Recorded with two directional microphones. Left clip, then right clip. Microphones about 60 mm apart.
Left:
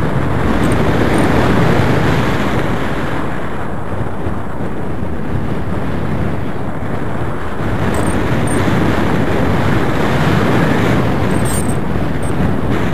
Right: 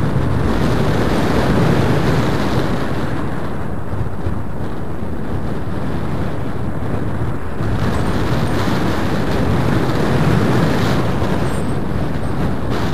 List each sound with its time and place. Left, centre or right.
0.5 s vehicle: right
1.5 s vehicle: centre
7.8 s vehicle: right
9.5 s waves: centre
10.5 s vehicle: right